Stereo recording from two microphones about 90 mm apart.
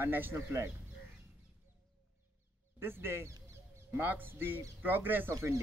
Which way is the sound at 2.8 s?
25° right (ahead or behind).